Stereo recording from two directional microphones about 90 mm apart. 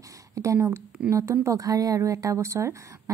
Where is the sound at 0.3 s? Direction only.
35° right (ahead or behind).